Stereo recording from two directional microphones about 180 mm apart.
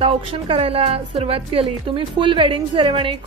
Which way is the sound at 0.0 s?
30° right (ahead or behind).